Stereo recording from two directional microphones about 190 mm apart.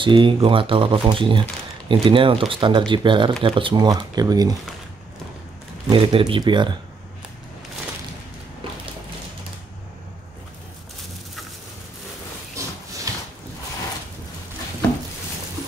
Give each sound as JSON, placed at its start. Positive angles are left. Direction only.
{"t": 0.0, "sound": "speech", "side_deg": -25}
{"t": 5.9, "sound": "speech", "side_deg": -25}
{"t": 12.6, "sound": "a sound", "side_deg": -15}